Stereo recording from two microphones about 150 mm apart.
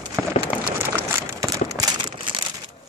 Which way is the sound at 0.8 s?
15° right (ahead or behind).